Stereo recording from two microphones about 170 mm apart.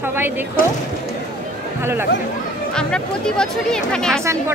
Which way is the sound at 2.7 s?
5° left (ahead or behind).